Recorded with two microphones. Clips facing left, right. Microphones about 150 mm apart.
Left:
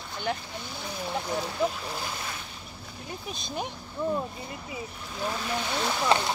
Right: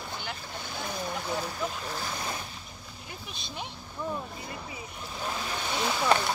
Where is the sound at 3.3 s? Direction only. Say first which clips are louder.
Left 6 dB; 40° left (ahead or behind).